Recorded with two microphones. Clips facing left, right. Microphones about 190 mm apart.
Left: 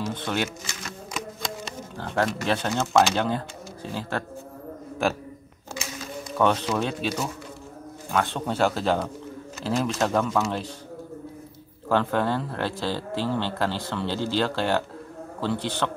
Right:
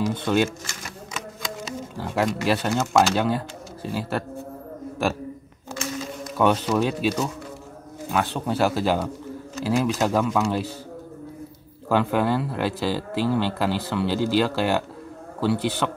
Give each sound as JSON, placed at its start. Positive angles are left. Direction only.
{"t": 0.0, "sound": "speech", "side_deg": -10}
{"t": 0.7, "sound": "shuffling cards", "side_deg": 0}
{"t": 6.3, "sound": "speech", "side_deg": -10}
{"t": 8.1, "sound": "speech", "side_deg": -5}
{"t": 11.9, "sound": "speech", "side_deg": -10}